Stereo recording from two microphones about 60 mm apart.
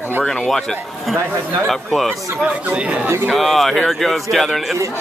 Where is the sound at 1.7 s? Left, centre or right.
Centre.